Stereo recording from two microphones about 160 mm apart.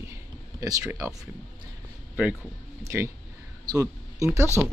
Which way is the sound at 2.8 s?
15° right (ahead or behind).